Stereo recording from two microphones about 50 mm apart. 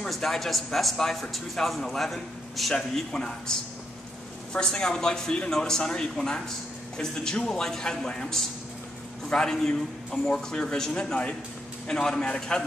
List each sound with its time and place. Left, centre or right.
0.1 s a man's voice: centre
2.7 s a man's voice: centre
4.6 s a man's voice: centre